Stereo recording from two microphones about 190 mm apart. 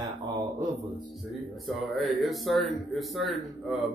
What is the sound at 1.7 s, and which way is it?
A man's voice, centre (ahead or behind).